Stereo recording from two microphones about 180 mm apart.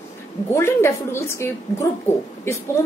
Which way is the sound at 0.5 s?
15° left (ahead or behind).